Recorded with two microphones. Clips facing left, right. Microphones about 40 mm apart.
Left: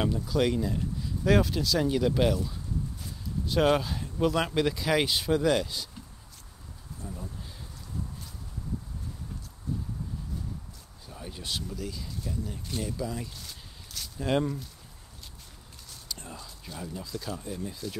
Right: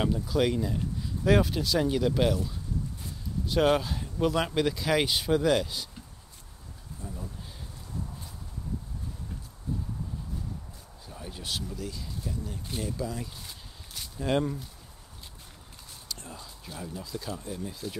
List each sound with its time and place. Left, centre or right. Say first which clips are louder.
0.0 s speech: even; centre
7.0 s speech: even; centre
11.1 s speech: even; centre
13.3 s a sound: even; centre
14.1 s speech: even; centre
16.1 s a sound: left 1 dB; centre
16.3 s speech: even; centre